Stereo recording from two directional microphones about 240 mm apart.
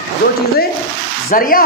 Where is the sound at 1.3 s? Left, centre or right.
Left.